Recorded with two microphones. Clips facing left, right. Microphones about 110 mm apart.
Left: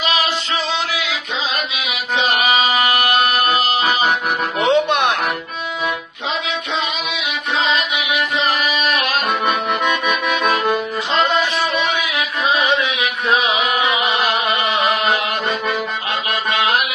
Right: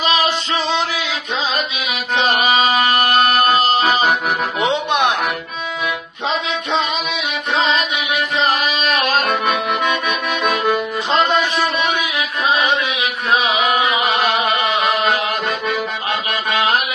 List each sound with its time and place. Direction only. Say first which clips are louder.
3.0 s music: right 2 dB; 35° right (ahead or behind)
4.6 s music: left 4 dB; 20° right (ahead or behind)
8.5 s a sound: right 1 dB; 30° right (ahead or behind)